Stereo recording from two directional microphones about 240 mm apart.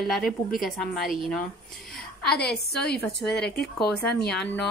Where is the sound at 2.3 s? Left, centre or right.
Left.